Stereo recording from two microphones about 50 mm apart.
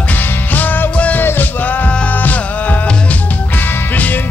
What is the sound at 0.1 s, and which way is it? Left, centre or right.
Music, left.